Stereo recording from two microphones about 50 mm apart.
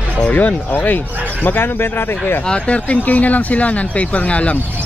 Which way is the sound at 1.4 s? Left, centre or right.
Left.